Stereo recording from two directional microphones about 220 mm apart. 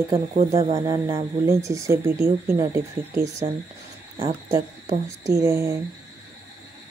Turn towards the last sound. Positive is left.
turn(degrees=-15)  # may be behind; listen again after turning